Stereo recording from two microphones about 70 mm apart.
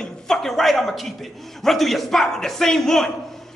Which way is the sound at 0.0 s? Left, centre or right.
Centre.